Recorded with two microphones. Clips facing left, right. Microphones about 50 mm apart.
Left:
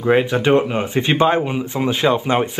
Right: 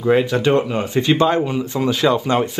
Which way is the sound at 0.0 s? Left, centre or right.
Left.